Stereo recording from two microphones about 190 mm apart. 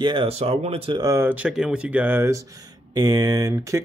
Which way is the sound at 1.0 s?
15° right (ahead or behind).